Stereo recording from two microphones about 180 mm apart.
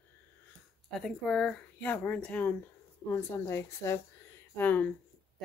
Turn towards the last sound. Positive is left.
turn(degrees=10)  # may be behind; listen again after turning